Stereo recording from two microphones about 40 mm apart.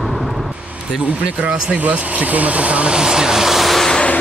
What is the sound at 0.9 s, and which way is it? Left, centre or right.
Speech, right.